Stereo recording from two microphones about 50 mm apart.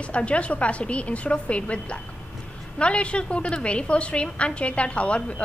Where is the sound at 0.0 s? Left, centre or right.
Left.